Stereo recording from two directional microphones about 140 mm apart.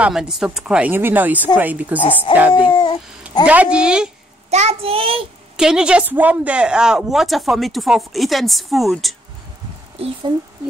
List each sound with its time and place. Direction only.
0.0 s speech: 5° right (ahead or behind)
2.7 s speech: 30° left (ahead or behind)
3.4 s speech: 10° right (ahead or behind)
4.5 s a child's voice: 50° right (ahead or behind)
5.6 s a woman's voice: 5° right (ahead or behind)
9.9 s a child's voice: 40° right (ahead or behind)